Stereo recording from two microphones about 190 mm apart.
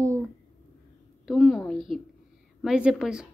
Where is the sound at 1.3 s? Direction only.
Centre (ahead or behind).